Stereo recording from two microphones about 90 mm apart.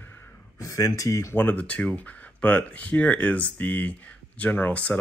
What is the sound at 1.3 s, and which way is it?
Speech, 20° left (ahead or behind).